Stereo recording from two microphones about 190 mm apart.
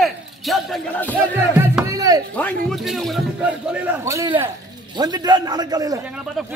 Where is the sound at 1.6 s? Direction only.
10° right (ahead or behind).